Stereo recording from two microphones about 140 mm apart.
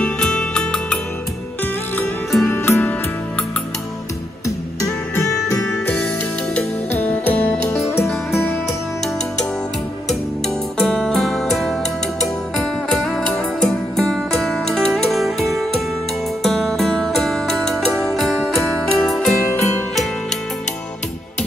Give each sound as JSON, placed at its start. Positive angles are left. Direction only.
{"t": 0.0, "sound": "music", "side_deg": 5}
{"t": 2.4, "sound": "music", "side_deg": 15}
{"t": 4.8, "sound": "music", "side_deg": 20}
{"t": 7.0, "sound": "music", "side_deg": 15}
{"t": 10.8, "sound": "music", "side_deg": 0}